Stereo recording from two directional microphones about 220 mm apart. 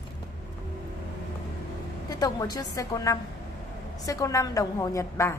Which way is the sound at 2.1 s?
15° left (ahead or behind).